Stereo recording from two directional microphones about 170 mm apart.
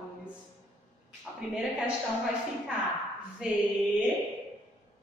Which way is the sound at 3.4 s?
5° right (ahead or behind).